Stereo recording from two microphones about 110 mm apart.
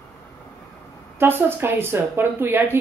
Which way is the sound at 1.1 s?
20° right (ahead or behind).